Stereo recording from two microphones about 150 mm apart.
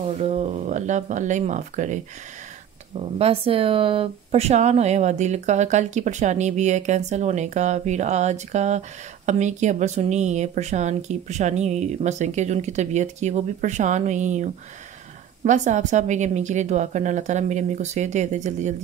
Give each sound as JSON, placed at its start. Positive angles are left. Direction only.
{"t": 0.2, "sound": "speech", "side_deg": -45}
{"t": 2.9, "sound": "speech", "side_deg": -40}